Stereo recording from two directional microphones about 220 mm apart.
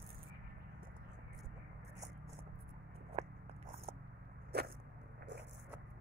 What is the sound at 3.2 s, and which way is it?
Biting, 30° right (ahead or behind).